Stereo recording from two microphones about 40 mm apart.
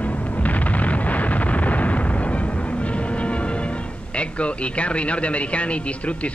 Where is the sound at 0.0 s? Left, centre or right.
Left.